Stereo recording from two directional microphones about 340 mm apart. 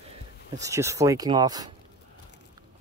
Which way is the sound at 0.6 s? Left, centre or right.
Centre.